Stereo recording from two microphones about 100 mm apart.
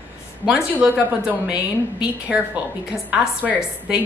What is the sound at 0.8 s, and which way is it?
A woman's voice, 15° right (ahead or behind).